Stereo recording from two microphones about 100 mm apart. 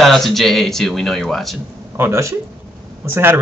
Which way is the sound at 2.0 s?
30° right (ahead or behind).